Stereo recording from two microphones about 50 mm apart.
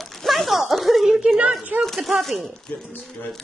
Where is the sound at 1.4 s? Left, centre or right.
Centre.